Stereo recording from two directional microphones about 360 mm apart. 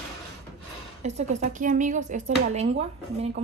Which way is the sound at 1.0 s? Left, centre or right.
Centre.